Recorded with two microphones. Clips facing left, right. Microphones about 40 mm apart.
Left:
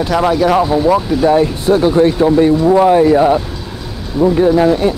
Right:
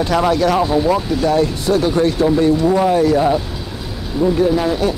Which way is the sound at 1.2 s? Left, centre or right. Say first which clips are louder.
Left 5 dB; left.